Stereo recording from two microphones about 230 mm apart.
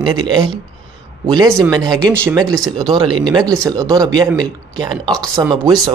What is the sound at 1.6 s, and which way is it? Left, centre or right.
Speech, centre.